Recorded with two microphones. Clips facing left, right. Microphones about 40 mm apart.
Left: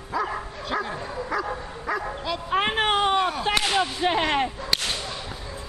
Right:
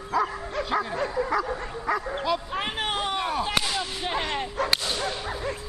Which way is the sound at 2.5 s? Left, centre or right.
Left.